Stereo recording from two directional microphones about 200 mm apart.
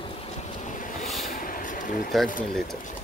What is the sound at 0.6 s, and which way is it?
Vehicle, 40° left (ahead or behind).